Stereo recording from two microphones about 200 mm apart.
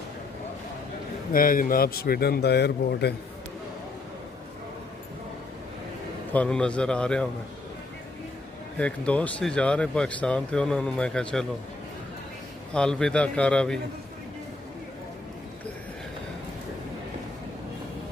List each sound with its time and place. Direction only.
1.3 s speech: 45° left (ahead or behind)
6.3 s speech: 5° left (ahead or behind)
8.7 s speech: 5° left (ahead or behind)
12.7 s speech: 5° left (ahead or behind)